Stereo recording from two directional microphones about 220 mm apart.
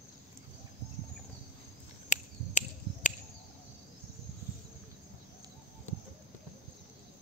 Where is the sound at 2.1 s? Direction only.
35° left (ahead or behind).